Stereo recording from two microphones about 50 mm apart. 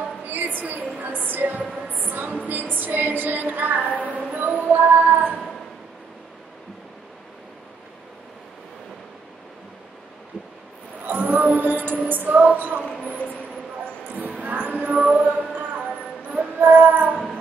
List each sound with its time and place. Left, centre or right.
0.0 s a sound: right
0.6 s a woman's voice: right
0.9 s female singing: right
11.1 s music: right
12.1 s female singing: right
14.4 s music: right
16.3 s child singing: right